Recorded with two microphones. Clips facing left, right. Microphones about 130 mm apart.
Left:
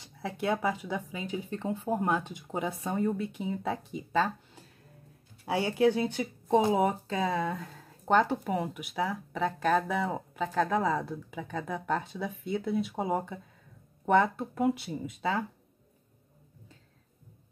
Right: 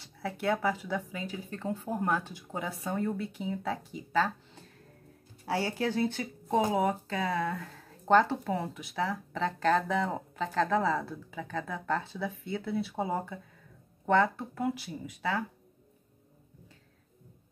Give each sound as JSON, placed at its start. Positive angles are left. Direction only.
{"t": 0.0, "sound": "speech", "side_deg": 20}
{"t": 5.4, "sound": "speech", "side_deg": 15}